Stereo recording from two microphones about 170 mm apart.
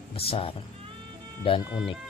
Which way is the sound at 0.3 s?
35° left (ahead or behind).